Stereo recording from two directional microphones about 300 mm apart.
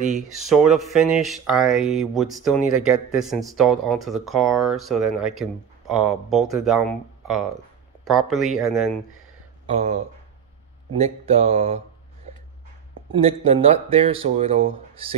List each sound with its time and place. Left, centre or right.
0.6 s speech: centre
9.7 s speech: right
13.1 s speech: centre